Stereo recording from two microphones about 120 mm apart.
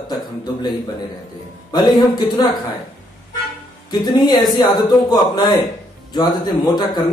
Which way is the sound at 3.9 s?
35° left (ahead or behind).